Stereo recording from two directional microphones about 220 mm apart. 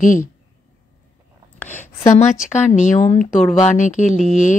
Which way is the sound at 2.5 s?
30° left (ahead or behind).